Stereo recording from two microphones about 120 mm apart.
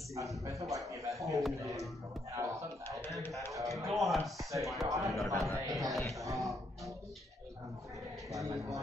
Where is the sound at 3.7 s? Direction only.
Centre (ahead or behind).